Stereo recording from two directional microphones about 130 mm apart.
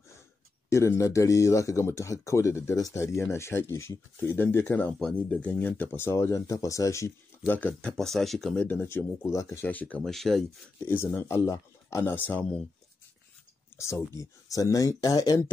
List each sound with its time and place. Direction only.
0.7 s speech: 20° left (ahead or behind)
4.9 s speech: 5° left (ahead or behind)
8.6 s speech: 15° left (ahead or behind)
10.9 s speech: 15° left (ahead or behind)
12.3 s speech: 10° left (ahead or behind)
13.7 s speech: 20° left (ahead or behind)